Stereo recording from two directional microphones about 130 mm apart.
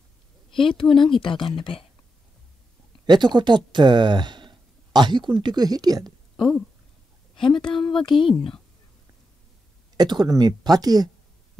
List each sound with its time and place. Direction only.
0.6 s speech: 40° left (ahead or behind)
3.1 s speech: 35° right (ahead or behind)
6.3 s speech: 5° left (ahead or behind)
7.3 s speech: 40° left (ahead or behind)
9.9 s speech: 30° right (ahead or behind)